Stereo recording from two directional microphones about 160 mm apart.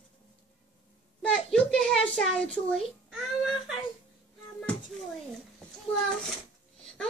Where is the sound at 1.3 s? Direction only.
5° left (ahead or behind).